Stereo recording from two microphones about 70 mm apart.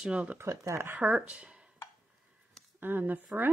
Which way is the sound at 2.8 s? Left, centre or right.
Right.